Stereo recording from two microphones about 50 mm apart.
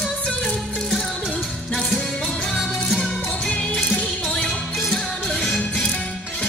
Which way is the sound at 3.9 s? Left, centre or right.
Centre.